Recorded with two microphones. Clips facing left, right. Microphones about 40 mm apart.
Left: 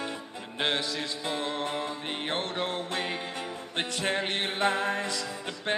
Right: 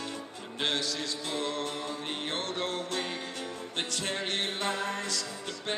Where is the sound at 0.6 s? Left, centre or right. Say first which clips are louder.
Left 2 dB; left.